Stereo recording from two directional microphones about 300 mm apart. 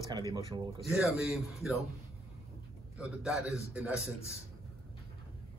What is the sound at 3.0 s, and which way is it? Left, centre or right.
A man's voice, centre.